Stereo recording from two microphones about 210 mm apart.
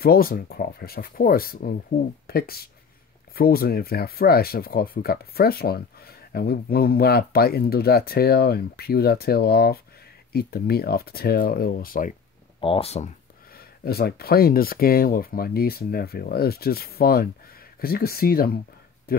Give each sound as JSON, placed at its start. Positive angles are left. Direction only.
{"t": 0.0, "sound": "speech", "side_deg": 45}
{"t": 12.5, "sound": "speech", "side_deg": 25}
{"t": 13.6, "sound": "speech", "side_deg": 45}
{"t": 19.1, "sound": "a sound", "side_deg": 45}